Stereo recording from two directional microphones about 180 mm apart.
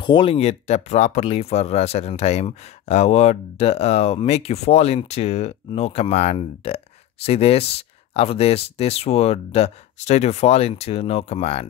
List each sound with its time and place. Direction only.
0.0 s speech: 25° left (ahead or behind)